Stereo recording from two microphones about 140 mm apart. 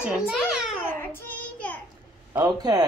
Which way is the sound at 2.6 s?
25° right (ahead or behind).